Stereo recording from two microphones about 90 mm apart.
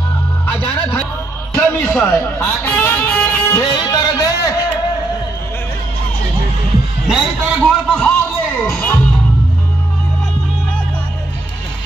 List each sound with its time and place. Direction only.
0.5 s music: 20° left (ahead or behind)
1.5 s speech: 25° left (ahead or behind)
3.6 s music: 50° left (ahead or behind)
7.1 s heart sounds: 5° right (ahead or behind)
7.6 s a sound: 15° left (ahead or behind)
8.5 s music: 20° left (ahead or behind)